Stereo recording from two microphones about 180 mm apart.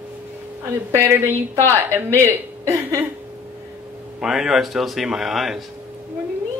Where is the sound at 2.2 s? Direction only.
15° right (ahead or behind).